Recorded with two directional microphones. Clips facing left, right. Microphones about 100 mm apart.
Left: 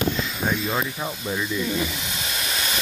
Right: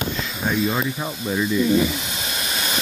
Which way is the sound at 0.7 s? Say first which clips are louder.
Right 2 dB; 5° right (ahead or behind).